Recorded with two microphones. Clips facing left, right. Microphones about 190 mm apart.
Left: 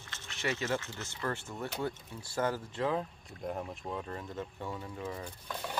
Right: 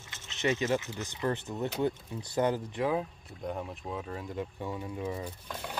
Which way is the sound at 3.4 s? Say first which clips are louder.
Right 1 dB; centre (ahead or behind).